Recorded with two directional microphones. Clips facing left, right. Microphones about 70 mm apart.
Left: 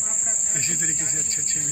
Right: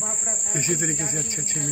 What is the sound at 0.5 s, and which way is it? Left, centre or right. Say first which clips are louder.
Cricket: right 7 dB; centre.